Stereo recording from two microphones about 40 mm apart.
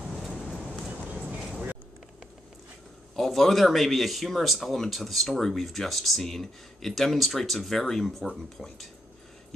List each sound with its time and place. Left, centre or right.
0.1 s a sound: centre
1.1 s vehicle: right
3.2 s speech: centre